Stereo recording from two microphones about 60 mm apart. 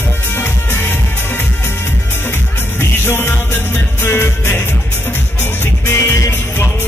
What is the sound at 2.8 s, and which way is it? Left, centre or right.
Music, left.